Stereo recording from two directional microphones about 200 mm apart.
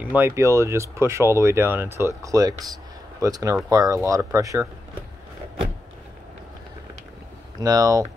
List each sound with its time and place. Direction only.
0.0 s speech: 10° right (ahead or behind)
7.5 s speech: 20° right (ahead or behind)